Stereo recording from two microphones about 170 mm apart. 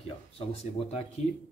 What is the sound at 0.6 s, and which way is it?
Speech, 40° left (ahead or behind).